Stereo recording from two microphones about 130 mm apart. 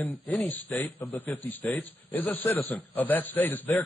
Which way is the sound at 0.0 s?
15° left (ahead or behind).